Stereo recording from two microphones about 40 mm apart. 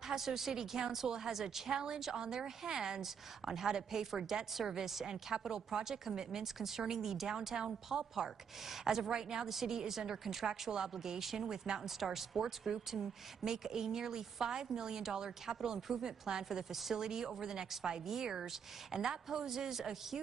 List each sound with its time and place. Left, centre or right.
0.1 s a woman's voice: centre
11.8 s a woman's voice: centre